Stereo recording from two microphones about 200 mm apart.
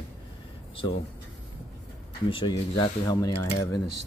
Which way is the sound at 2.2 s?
25° left (ahead or behind).